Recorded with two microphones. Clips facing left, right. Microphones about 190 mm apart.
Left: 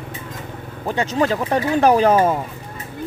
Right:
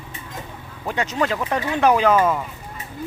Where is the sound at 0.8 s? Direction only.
30° left (ahead or behind).